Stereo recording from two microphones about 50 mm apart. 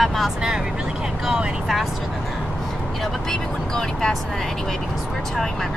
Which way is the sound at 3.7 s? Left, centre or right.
Centre.